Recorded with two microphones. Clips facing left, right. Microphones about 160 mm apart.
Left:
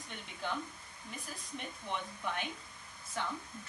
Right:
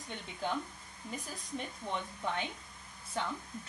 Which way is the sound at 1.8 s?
40° right (ahead or behind).